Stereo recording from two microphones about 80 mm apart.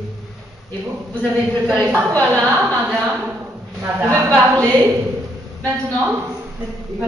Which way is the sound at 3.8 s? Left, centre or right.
Right.